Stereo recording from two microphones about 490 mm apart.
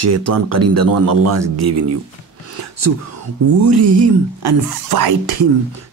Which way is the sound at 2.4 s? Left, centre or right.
Right.